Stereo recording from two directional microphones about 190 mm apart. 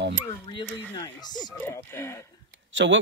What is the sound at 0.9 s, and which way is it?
Speech, 20° left (ahead or behind).